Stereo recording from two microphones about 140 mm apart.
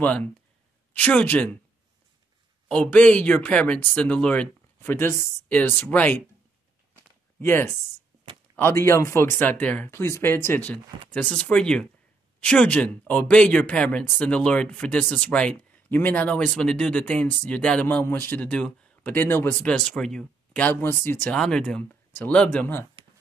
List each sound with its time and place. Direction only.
0.0 s speech: 10° left (ahead or behind)
2.7 s speech: 10° left (ahead or behind)
7.3 s speech: 15° left (ahead or behind)